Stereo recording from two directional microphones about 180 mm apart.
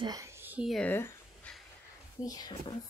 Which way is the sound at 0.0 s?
20° right (ahead or behind).